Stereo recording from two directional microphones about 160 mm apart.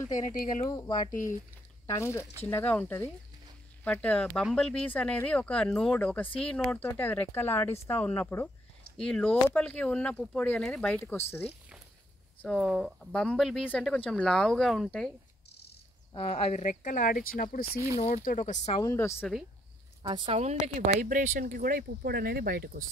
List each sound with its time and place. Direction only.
0.7 s speech: 25° left (ahead or behind)
1.9 s speech: 20° left (ahead or behind)
8.9 s speech: 5° left (ahead or behind)
11.1 s speech: 15° left (ahead or behind)
12.4 s speech: centre (ahead or behind)
16.1 s speech: 35° left (ahead or behind); by 17.6 s 60° left (ahead or behind)
17.9 s speech: 45° left (ahead or behind)
18.8 s speech: 20° left (ahead or behind)
20.0 s speech: 30° right (ahead or behind); by 22.8 s 65° right (ahead or behind)